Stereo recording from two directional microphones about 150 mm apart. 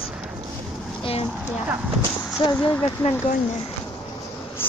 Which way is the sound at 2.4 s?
35° left (ahead or behind).